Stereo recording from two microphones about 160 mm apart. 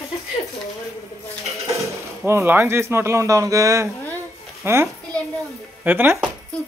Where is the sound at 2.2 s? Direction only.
15° right (ahead or behind).